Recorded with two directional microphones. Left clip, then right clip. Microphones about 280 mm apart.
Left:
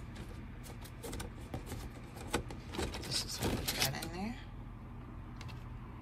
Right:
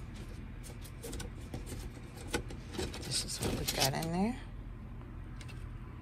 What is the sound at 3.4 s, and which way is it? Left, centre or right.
Speech, centre.